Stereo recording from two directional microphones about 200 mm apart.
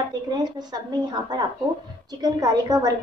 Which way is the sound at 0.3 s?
20° right (ahead or behind).